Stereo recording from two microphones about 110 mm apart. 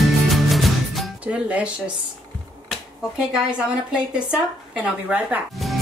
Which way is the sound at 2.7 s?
5° right (ahead or behind).